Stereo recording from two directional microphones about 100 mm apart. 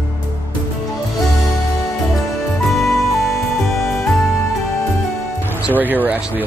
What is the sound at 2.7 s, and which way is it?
Music, centre (ahead or behind).